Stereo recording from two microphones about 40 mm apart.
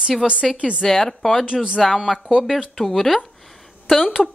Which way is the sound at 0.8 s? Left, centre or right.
Centre.